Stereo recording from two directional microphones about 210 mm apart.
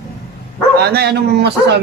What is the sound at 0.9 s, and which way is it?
Speech, 50° right (ahead or behind).